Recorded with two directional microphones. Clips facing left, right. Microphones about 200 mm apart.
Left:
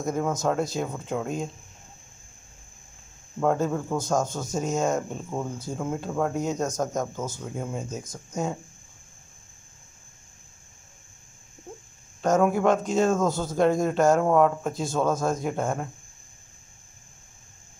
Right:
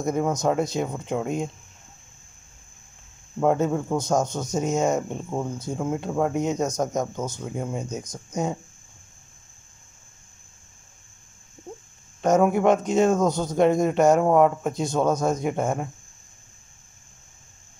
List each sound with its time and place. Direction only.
0.4 s speech: 20° right (ahead or behind)
3.6 s speech: 20° right (ahead or behind)
7.7 s speech: centre (ahead or behind)
8.1 s speech: 20° right (ahead or behind)
11.7 s a sound: 15° right (ahead or behind)
12.2 s speech: 20° right (ahead or behind)